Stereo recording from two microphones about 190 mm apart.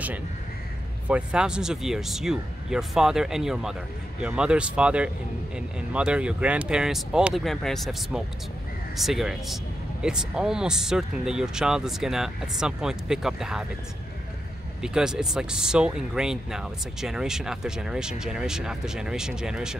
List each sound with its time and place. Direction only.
1.0 s speech: 5° right (ahead or behind)
14.8 s speech: 5° right (ahead or behind)